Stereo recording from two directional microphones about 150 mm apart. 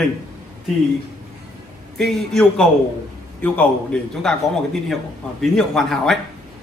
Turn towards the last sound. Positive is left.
turn(degrees=0)  # may be behind; listen again after turning